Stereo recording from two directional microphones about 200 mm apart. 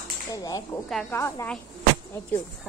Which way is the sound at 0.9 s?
Centre (ahead or behind).